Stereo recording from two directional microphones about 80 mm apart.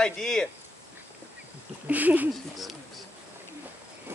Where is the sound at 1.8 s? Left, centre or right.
Right.